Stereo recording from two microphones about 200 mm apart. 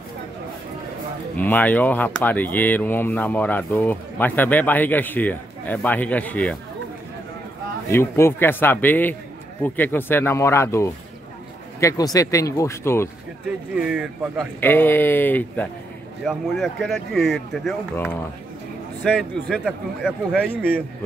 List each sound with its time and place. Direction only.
1.3 s speech: 10° left (ahead or behind)
7.9 s speech: 10° left (ahead or behind)
13.7 s speech: 5° right (ahead or behind)
14.6 s speech: 10° left (ahead or behind)
19.0 s speech: centre (ahead or behind)